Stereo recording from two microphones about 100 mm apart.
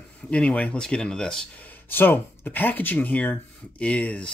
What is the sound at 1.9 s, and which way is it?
Speech, 20° left (ahead or behind).